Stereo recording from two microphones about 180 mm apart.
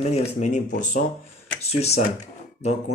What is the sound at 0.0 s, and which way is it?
Speech, 35° left (ahead or behind).